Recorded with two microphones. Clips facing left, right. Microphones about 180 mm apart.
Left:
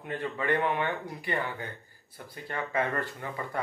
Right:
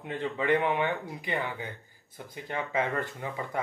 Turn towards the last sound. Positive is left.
turn(degrees=-15)  # may be behind; listen again after turning